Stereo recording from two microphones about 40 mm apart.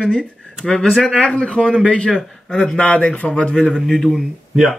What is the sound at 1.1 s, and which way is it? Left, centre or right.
Speech, left.